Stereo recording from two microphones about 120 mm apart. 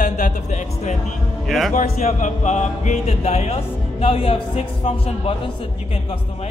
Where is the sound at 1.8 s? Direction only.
65° left (ahead or behind).